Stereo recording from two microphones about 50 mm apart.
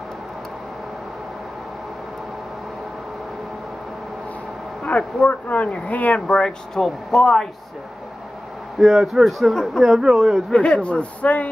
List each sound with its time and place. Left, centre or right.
4.8 s speech: left; by 7.4 s centre
8.7 s speech: centre
10.5 s speech: left